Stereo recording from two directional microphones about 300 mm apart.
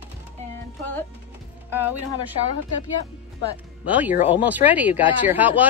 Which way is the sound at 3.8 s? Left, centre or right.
Centre.